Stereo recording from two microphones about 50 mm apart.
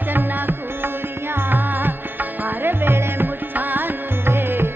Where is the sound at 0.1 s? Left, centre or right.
Right.